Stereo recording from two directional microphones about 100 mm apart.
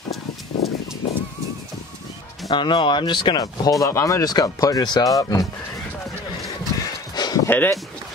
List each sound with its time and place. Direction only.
2.5 s speech: 55° left (ahead or behind)
3.8 s speech: 30° left (ahead or behind)
6.8 s a sound: 40° left (ahead or behind)
7.4 s speech: 20° left (ahead or behind)